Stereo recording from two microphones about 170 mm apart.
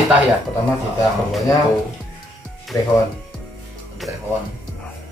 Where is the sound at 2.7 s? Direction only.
20° left (ahead or behind).